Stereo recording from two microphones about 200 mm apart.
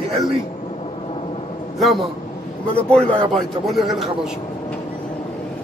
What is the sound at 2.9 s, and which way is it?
A man's voice, 5° left (ahead or behind).